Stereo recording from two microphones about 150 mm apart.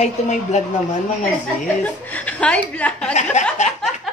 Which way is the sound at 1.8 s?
10° left (ahead or behind).